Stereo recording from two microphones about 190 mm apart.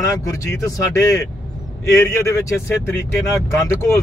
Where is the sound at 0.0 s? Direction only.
15° left (ahead or behind).